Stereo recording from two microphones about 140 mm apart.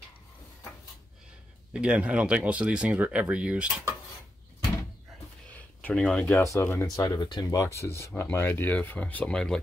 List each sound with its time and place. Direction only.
1.7 s speech: 5° right (ahead or behind)
5.5 s a sound: 10° left (ahead or behind)
6.4 s speech: 20° left (ahead or behind)
7.0 s speech: 30° left (ahead or behind); by 9.6 s 5° left (ahead or behind)